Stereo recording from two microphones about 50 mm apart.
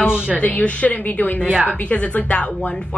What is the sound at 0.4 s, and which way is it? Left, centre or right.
A woman's voice, left.